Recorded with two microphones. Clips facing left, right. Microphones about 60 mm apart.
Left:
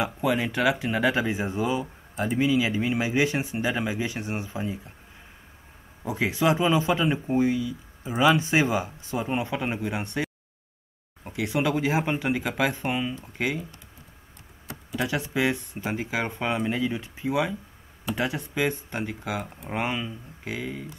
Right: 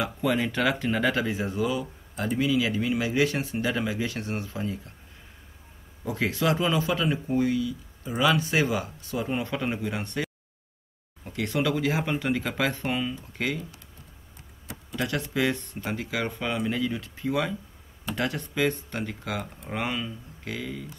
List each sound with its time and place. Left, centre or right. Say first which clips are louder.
0.2 s speech: even; centre
1.2 s speech: left 1 dB; left
6.0 s speech: left 2 dB; centre
11.3 s speech: left 1 dB; centre
14.7 s a sound: left 1 dB; centre
15.0 s speech: left 1 dB; centre
19.7 s speech: left 2 dB; left